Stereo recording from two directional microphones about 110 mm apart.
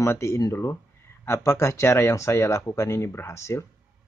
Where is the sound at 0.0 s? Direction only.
25° left (ahead or behind).